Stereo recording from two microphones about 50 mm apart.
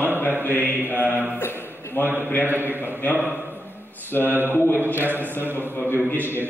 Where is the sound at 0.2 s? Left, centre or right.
Left.